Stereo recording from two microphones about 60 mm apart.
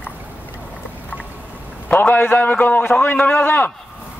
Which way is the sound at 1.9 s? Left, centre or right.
Left.